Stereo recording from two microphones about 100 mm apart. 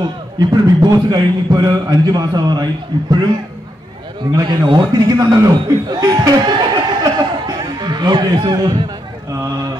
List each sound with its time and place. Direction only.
0.4 s a man's voice: 45° right (ahead or behind)
4.2 s a man's voice: 45° right (ahead or behind)
9.3 s speech: 35° right (ahead or behind)